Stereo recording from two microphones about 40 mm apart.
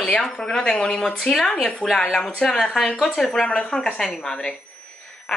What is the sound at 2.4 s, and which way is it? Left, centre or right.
Speech, centre.